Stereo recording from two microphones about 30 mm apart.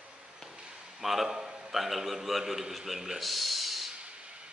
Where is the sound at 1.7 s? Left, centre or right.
Centre.